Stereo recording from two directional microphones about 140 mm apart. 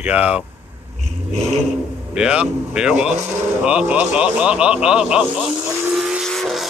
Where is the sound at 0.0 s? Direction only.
10° right (ahead or behind).